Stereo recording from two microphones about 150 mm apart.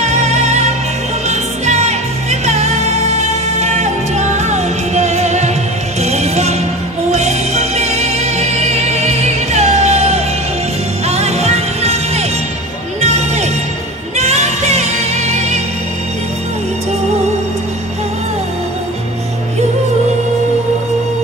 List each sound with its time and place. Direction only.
0.0 s music: 45° right (ahead or behind)